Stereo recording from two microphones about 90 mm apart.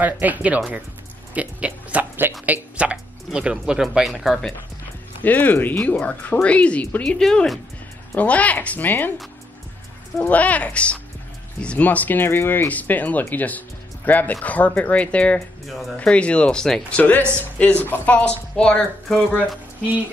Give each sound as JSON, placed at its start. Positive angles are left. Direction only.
{"t": 0.0, "sound": "speech", "side_deg": -20}
{"t": 5.2, "sound": "speech", "side_deg": 20}
{"t": 8.2, "sound": "speech", "side_deg": 15}
{"t": 10.3, "sound": "speech", "side_deg": 15}
{"t": 15.6, "sound": "speech", "side_deg": 0}
{"t": 16.0, "sound": "speech", "side_deg": 15}